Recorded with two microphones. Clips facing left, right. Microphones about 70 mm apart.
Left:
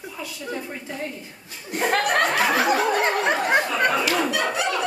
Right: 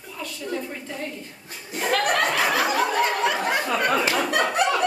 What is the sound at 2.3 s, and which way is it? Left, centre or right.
Snicker, centre.